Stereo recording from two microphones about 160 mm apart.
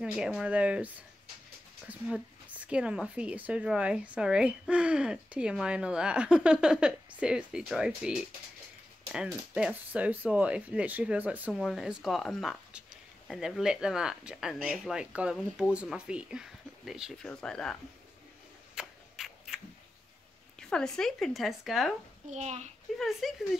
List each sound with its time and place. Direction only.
0.0 s speech: 5° right (ahead or behind)
18.8 s a sound: centre (ahead or behind)
20.5 s speech: 5° left (ahead or behind)
22.3 s a child's voice: 45° right (ahead or behind)
22.9 s speech: centre (ahead or behind)